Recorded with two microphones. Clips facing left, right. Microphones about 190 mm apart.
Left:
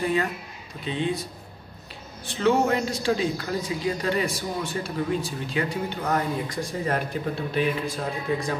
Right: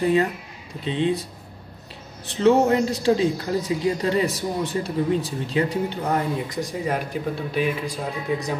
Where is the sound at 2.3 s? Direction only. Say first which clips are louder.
Right 4 dB; 30° right (ahead or behind).